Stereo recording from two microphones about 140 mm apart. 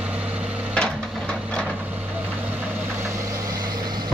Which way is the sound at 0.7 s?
5° left (ahead or behind).